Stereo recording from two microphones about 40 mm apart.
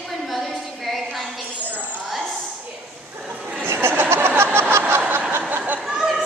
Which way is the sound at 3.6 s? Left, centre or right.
Right.